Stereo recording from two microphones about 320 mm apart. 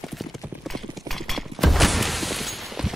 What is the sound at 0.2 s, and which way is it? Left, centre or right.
Clip-clop, centre.